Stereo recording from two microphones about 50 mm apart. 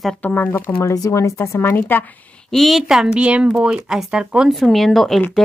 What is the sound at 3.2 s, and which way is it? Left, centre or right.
Speech, right.